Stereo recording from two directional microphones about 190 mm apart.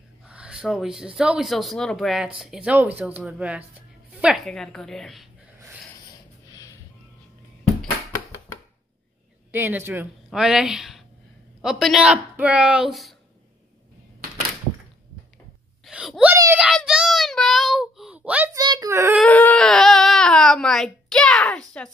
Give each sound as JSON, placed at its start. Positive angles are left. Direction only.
{"t": 0.3, "sound": "a woman's voice", "side_deg": -5}
{"t": 6.5, "sound": "vehicle", "side_deg": 15}
{"t": 9.5, "sound": "speech", "side_deg": -10}
{"t": 15.8, "sound": "wail", "side_deg": 0}
{"t": 16.3, "sound": "a sound", "side_deg": -15}
{"t": 16.6, "sound": "child singing", "side_deg": -5}
{"t": 18.5, "sound": "a sound", "side_deg": -20}
{"t": 19.1, "sound": "baby cry", "side_deg": 5}